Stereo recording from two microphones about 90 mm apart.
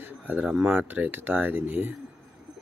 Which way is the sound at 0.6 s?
20° right (ahead or behind).